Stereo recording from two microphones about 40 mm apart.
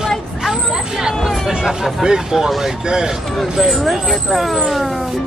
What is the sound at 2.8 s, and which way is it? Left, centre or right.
Speech, centre.